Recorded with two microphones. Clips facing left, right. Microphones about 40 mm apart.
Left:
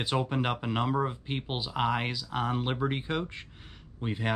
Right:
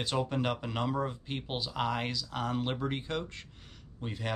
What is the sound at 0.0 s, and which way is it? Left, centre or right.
Speech, centre.